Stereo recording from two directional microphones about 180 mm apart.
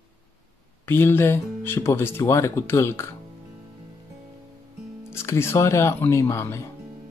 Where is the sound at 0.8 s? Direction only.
10° left (ahead or behind).